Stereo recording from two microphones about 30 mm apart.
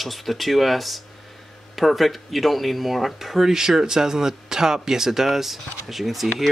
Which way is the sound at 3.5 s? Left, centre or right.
Centre.